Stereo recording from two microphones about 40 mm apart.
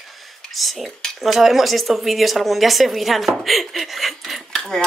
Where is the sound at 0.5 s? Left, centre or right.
Centre.